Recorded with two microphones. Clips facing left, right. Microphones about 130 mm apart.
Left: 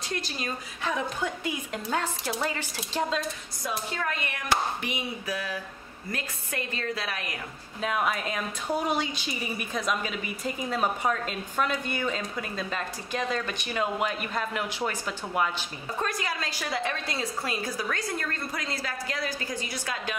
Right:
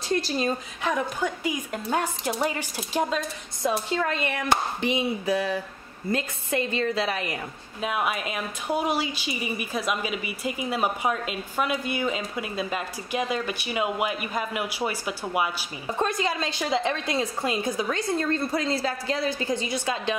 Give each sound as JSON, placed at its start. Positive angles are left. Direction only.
{"t": 0.1, "sound": "a woman's voice", "side_deg": -35}
{"t": 0.8, "sound": "a woman's voice", "side_deg": -10}
{"t": 3.6, "sound": "a woman's voice", "side_deg": -25}
{"t": 7.8, "sound": "a woman's voice", "side_deg": -5}
{"t": 16.0, "sound": "a woman's voice", "side_deg": -25}